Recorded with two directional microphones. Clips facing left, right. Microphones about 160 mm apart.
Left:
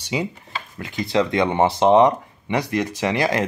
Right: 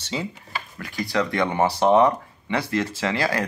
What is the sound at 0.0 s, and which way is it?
Speech, 15° left (ahead or behind).